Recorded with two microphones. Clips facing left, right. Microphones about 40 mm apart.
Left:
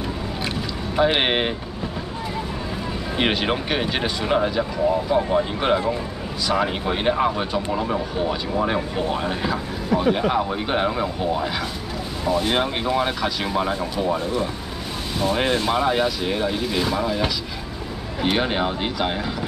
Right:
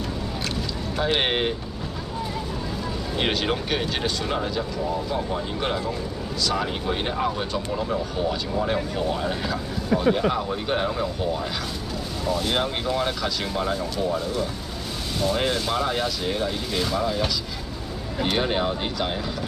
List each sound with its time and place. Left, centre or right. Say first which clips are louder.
0.9 s speech: left 4 dB; left
3.2 s speech: left 3 dB; centre
13.7 s speech: left 2 dB; left